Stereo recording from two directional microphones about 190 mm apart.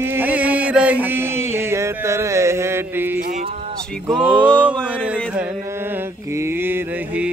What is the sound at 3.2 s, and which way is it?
Speech, 40° right (ahead or behind).